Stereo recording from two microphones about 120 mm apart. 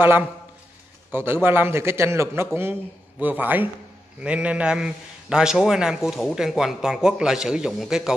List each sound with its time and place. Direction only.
0.0 s a man's voice: 15° right (ahead or behind)